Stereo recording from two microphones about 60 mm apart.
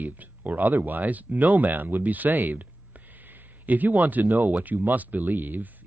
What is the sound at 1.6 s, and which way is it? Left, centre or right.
Speech, right.